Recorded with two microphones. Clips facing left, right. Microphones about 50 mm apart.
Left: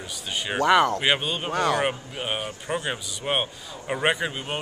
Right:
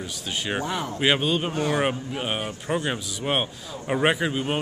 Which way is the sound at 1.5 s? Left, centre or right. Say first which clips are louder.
Left 2 dB; left.